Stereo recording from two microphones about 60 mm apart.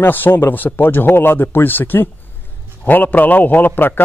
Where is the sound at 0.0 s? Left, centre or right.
Left.